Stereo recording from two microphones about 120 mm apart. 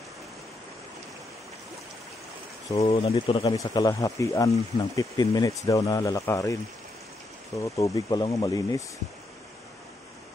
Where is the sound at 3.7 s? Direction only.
30° left (ahead or behind).